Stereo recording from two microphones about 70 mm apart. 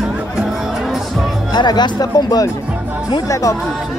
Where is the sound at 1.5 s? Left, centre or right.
Left.